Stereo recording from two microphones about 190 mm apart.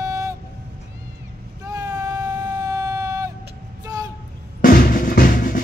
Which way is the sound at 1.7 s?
20° right (ahead or behind).